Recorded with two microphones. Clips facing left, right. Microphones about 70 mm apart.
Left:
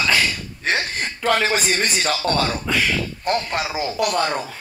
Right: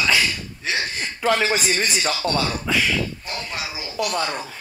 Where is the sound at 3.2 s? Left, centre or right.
Left.